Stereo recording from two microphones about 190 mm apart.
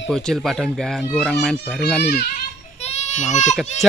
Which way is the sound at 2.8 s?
35° left (ahead or behind).